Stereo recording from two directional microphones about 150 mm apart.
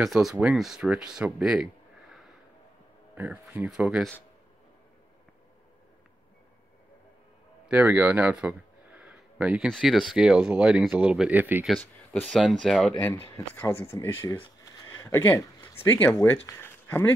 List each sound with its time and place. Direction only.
0.0 s speech: centre (ahead or behind)
3.2 s speech: 10° right (ahead or behind)
7.6 s a sound: 10° right (ahead or behind)
9.7 s speech: centre (ahead or behind)
11.8 s speech: 10° left (ahead or behind)
13.0 s speech: 15° left (ahead or behind)
14.2 s a sound: 30° left (ahead or behind); by 16.1 s 15° left (ahead or behind)
16.4 s speech: 15° left (ahead or behind)